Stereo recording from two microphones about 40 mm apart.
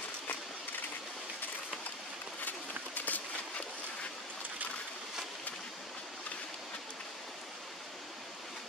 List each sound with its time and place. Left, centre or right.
2.4 s run: left